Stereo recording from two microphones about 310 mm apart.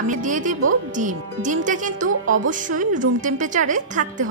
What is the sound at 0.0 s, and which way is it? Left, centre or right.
A woman's voice, right.